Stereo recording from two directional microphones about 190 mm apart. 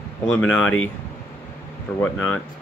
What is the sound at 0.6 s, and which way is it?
Speech, 90° left.